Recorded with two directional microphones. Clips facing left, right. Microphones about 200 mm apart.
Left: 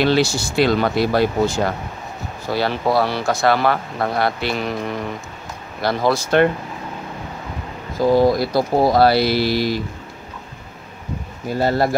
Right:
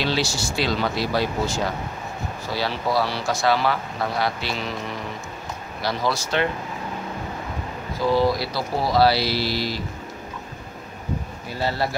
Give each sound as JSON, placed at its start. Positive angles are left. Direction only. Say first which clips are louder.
{"t": 0.0, "sound": "speech", "louder": "left 7 dB", "side_deg": 55}
{"t": 5.8, "sound": "speech", "louder": "left 6 dB", "side_deg": 55}
{"t": 8.0, "sound": "speech", "louder": "left 6 dB", "side_deg": 45}
{"t": 11.4, "sound": "speech", "louder": "left 8 dB", "side_deg": 50}